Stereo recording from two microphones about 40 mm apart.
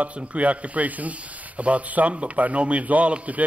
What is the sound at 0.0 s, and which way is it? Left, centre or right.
Speech, right.